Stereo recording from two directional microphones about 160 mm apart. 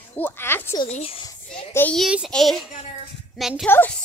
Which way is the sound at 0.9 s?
35° left (ahead or behind).